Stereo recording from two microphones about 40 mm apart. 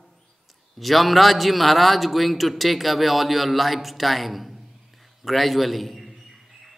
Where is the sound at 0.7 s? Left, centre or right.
Centre.